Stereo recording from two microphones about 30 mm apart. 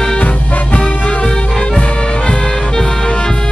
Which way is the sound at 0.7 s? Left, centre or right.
Left.